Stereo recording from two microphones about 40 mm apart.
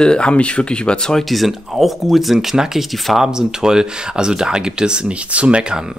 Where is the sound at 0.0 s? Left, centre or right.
Left.